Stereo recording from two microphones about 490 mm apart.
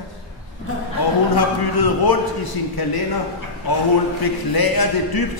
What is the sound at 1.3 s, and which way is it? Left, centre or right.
A man's voice, left.